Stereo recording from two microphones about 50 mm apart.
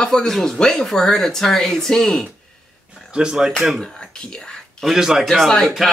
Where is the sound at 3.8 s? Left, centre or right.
Centre.